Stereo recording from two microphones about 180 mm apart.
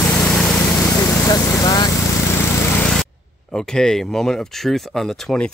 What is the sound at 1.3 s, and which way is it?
Speech, 20° left (ahead or behind).